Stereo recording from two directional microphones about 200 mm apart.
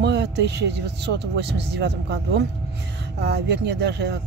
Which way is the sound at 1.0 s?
55° right (ahead or behind).